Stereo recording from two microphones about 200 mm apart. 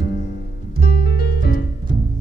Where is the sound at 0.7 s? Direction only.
50° left (ahead or behind).